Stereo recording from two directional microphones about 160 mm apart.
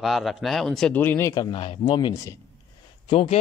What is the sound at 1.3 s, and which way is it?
Speech, 25° left (ahead or behind).